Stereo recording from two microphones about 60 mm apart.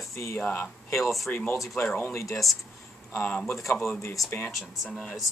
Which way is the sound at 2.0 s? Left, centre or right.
Left.